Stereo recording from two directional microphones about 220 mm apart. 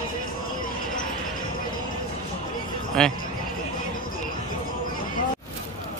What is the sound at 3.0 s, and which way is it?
Speech, 5° left (ahead or behind).